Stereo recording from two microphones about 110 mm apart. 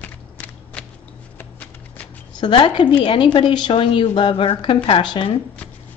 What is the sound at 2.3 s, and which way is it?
Speech, 45° left (ahead or behind).